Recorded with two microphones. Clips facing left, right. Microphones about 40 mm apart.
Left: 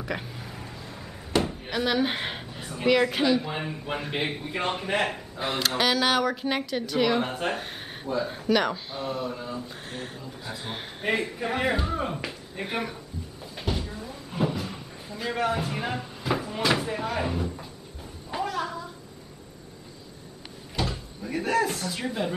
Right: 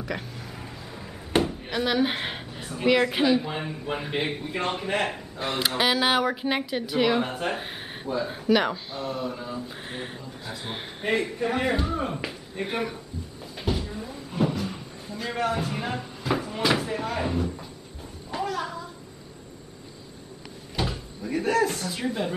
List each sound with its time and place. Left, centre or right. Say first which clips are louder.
0.0 s a sound: even; centre
1.4 s speech: right 1 dB; centre
3.5 s speech: right 1 dB; centre
5.8 s speech: right 1 dB; centre
7.2 s speech: even; centre
8.9 s speech: even; centre
9.8 s speech: right 2 dB; centre
10.4 s speech: right 1 dB; centre
13.6 s cupboard open or close: right 2 dB; centre
18.3 s a sound: even; centre
20.7 s cupboard open or close: right 1 dB; centre
21.2 s speech: right 2 dB; centre